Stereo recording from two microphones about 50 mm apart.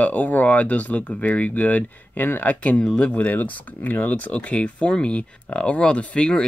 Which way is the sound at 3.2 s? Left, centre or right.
Left.